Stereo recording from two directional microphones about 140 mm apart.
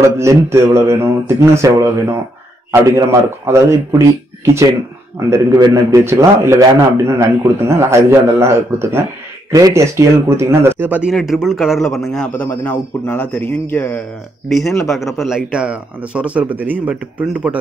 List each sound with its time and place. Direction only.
0.0 s speech: 20° right (ahead or behind)
5.3 s a man's voice: 25° right (ahead or behind); by 12.4 s 5° left (ahead or behind)
12.4 s a man's voice: 15° left (ahead or behind)
14.5 s a man's voice: centre (ahead or behind)